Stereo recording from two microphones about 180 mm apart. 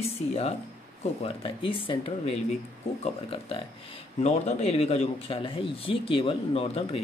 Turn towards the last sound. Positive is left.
turn(degrees=30)  # may be behind; listen again after turning